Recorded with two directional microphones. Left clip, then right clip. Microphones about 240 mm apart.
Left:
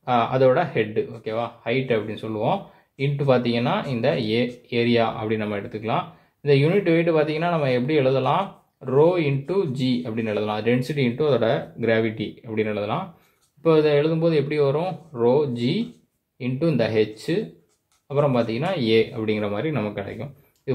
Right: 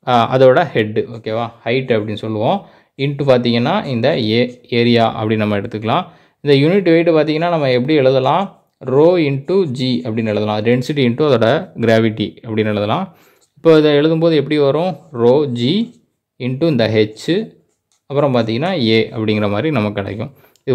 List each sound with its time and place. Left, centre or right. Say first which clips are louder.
0.0 s speech: right 8 dB; right